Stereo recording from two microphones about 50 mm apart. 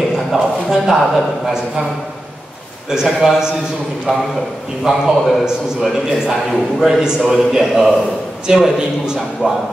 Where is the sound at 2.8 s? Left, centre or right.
Centre.